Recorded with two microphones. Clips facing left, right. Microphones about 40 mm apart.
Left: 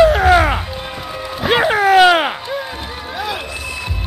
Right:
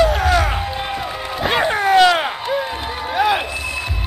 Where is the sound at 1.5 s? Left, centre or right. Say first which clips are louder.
Left 4 dB; centre.